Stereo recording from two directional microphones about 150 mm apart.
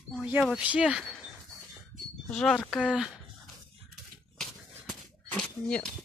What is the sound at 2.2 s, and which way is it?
Speech, 5° left (ahead or behind).